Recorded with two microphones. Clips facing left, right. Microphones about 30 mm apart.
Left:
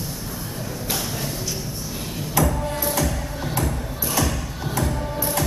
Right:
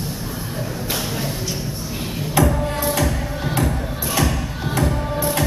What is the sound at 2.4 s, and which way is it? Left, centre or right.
Music, right.